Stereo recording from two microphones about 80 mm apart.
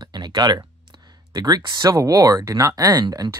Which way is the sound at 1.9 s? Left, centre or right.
Right.